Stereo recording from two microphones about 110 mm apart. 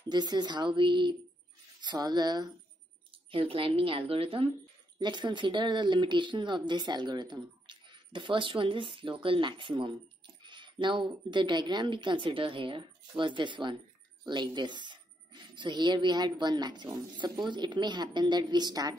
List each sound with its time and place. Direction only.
0.1 s speech: 40° right (ahead or behind)
3.1 s speech: 55° right (ahead or behind)
4.9 s speech: 45° right (ahead or behind)